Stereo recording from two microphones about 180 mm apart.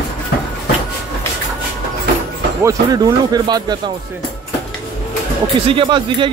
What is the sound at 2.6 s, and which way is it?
Speech, 20° right (ahead or behind).